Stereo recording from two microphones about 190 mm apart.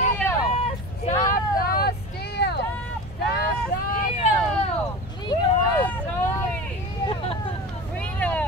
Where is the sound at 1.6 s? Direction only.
50° left (ahead or behind).